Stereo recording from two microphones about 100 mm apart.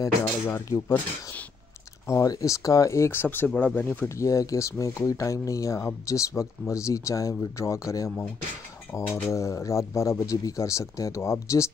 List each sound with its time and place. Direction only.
0.0 s speech: 35° left (ahead or behind)
2.0 s speech: 35° left (ahead or behind); by 4.1 s 15° left (ahead or behind)
4.2 s speech: 35° left (ahead or behind)